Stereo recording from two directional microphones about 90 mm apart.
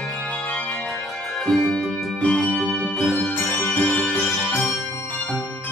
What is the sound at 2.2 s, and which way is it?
Music, 15° left (ahead or behind).